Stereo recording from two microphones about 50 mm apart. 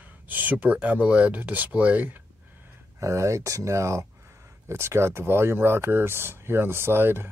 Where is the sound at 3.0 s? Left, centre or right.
Right.